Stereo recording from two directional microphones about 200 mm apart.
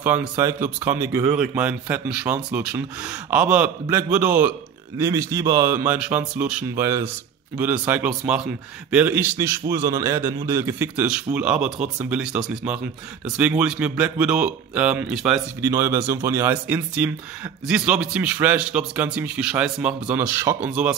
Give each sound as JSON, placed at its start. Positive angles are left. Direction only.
{"t": 0.0, "sound": "a man's voice", "side_deg": -10}
{"t": 15.7, "sound": "a man's voice", "side_deg": -15}